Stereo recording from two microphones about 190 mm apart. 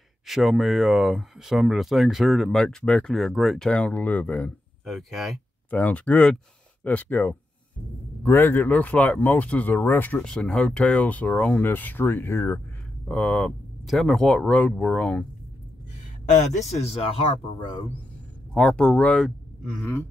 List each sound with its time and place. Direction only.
0.3 s speech: centre (ahead or behind)
16.3 s speech: 40° left (ahead or behind)
18.5 s speech: 5° left (ahead or behind)